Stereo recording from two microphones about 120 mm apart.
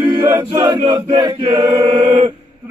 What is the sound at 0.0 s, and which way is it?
Chant, 35° right (ahead or behind).